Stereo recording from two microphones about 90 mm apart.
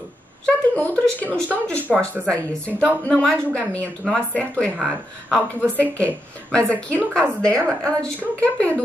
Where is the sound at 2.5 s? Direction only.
15° left (ahead or behind).